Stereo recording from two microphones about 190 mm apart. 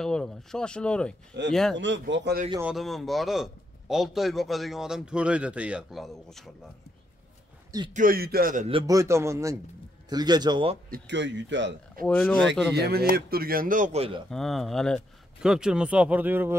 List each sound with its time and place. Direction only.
0.0 s a man's voice: 5° left (ahead or behind)
1.8 s a man's voice: 70° right (ahead or behind)
2.6 s a man's voice: centre (ahead or behind)
7.9 s a man's voice: 45° right (ahead or behind)
8.6 s speech: 30° right (ahead or behind)
8.9 s a man's voice: 15° right (ahead or behind)
10.9 s a man's voice: 65° right (ahead or behind)
12.1 s a man's voice: 5° left (ahead or behind)
12.7 s a man's voice: 60° right (ahead or behind); by 14.2 s 30° right (ahead or behind)
14.3 s a man's voice: centre (ahead or behind)